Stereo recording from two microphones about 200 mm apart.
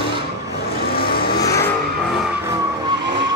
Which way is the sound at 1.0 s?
50° left (ahead or behind).